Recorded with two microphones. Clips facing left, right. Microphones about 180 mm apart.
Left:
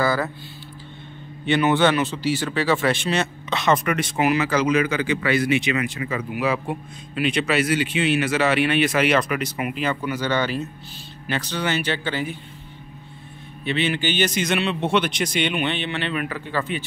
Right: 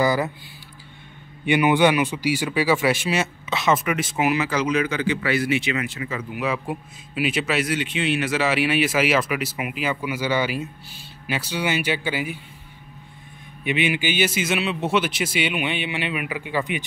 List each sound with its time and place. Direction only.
0.0 s a sound: 15° right (ahead or behind)
1.4 s speech: 10° right (ahead or behind)
6.0 s speech: 35° left (ahead or behind)
6.3 s speech: centre (ahead or behind)
13.7 s speech: 10° right (ahead or behind)